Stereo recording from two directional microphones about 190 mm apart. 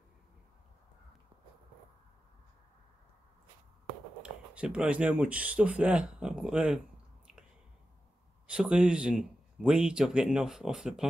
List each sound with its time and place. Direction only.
4.2 s speech: 5° right (ahead or behind)
8.5 s speech: 5° right (ahead or behind)